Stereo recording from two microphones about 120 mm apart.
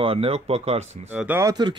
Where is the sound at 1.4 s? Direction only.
35° right (ahead or behind).